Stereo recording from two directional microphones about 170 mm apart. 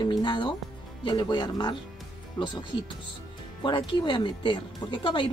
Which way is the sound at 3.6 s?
30° left (ahead or behind).